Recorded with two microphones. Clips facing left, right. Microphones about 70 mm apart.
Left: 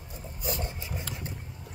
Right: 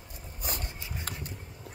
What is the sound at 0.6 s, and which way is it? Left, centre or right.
Dog, left.